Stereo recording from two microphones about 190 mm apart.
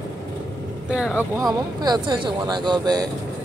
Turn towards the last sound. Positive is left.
turn(degrees=-20)  # may be behind; listen again after turning